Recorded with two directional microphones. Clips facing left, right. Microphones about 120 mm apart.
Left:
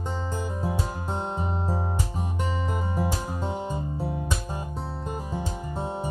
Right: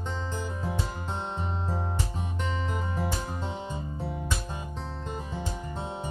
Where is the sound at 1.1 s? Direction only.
45° left (ahead or behind).